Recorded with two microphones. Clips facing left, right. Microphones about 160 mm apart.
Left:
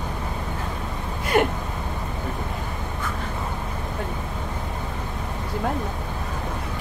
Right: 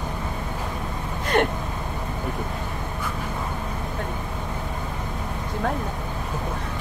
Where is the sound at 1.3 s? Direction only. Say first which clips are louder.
Left 1 dB; 5° left (ahead or behind).